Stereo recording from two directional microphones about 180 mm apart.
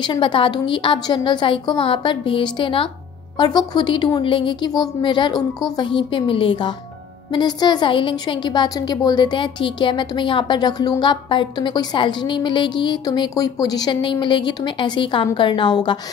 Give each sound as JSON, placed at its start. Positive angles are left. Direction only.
{"t": 0.0, "sound": "a woman's voice", "side_deg": 25}